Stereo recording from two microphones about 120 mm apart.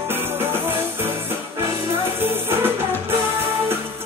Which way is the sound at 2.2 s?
20° right (ahead or behind).